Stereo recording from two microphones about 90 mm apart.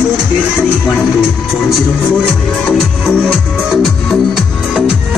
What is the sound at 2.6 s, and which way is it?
Music, 5° left (ahead or behind).